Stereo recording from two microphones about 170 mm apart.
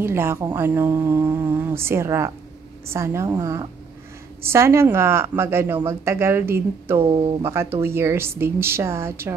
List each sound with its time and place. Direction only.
0.0 s a woman's voice: 15° right (ahead or behind)